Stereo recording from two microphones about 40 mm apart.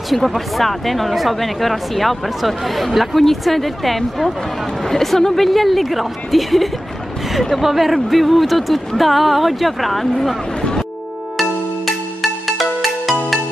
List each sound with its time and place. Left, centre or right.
0.3 s speech: centre
10.6 s music: centre
11.3 s music: centre